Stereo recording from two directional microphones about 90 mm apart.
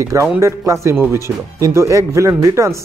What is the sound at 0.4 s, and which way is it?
Speech, 30° right (ahead or behind).